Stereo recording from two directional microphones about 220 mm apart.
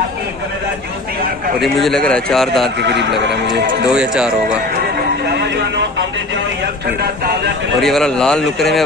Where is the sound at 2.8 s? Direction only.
50° right (ahead or behind).